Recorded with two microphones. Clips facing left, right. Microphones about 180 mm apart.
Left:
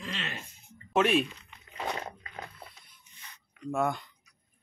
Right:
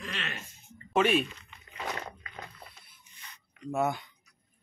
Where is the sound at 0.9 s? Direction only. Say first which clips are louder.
Even; centre (ahead or behind).